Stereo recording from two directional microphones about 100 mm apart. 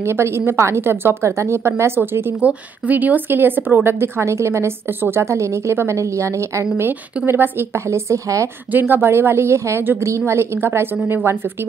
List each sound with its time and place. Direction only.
0.0 s a woman's voice: 25° right (ahead or behind)
8.7 s a woman's voice: 20° right (ahead or behind)